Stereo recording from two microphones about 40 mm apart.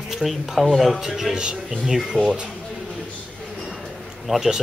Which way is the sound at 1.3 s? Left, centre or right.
Centre.